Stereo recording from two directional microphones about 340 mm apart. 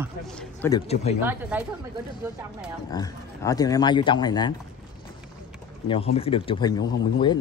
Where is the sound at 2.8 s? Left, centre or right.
Centre.